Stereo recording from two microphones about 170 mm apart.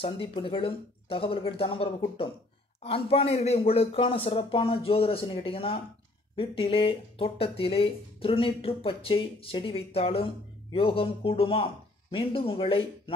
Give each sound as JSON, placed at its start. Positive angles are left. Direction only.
{"t": 0.0, "sound": "speech", "side_deg": 30}